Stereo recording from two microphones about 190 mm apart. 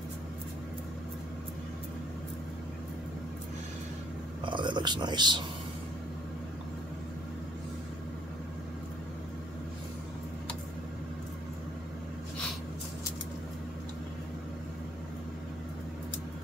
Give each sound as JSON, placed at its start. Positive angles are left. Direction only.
{"t": 4.5, "sound": "speech", "side_deg": -25}